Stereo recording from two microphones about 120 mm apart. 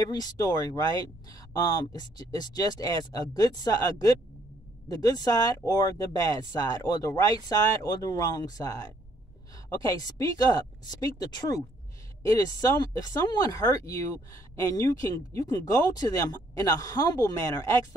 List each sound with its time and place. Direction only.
0.0 s speech: 35° left (ahead or behind)